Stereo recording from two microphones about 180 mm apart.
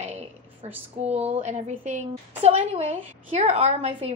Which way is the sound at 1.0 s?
40° right (ahead or behind).